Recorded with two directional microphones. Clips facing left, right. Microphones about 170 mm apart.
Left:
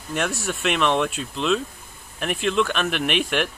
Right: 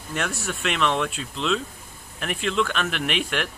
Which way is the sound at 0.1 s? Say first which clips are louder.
Left 3 dB; 10° left (ahead or behind).